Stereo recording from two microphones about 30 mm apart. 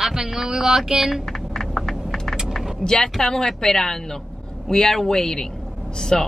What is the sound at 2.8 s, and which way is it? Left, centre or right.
Speech, left.